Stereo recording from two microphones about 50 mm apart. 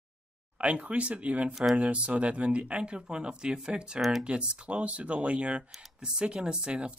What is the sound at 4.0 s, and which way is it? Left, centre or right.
Speech, centre.